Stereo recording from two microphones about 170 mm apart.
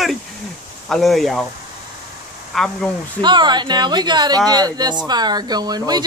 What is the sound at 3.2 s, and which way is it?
Speech, 25° right (ahead or behind).